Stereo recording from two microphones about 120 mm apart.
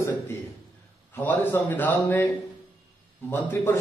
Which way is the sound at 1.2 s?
15° left (ahead or behind).